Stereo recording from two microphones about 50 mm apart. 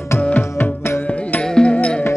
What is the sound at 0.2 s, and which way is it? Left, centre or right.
Music, left.